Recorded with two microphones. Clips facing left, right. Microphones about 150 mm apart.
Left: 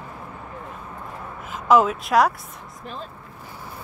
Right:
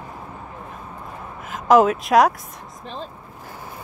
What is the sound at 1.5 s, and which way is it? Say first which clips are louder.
Speech: right 3 dB; 45° right (ahead or behind).